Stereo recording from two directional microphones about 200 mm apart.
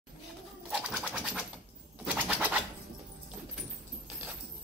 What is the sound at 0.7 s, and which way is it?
Bird, 5° right (ahead or behind).